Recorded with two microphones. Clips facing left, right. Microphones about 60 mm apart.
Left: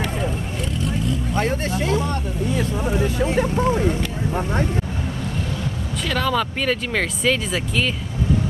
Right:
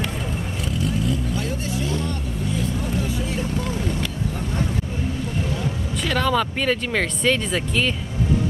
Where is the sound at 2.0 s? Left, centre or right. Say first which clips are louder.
Left 3 dB; left.